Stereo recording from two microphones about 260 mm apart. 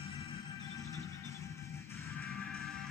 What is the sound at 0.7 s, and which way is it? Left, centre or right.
Music, centre.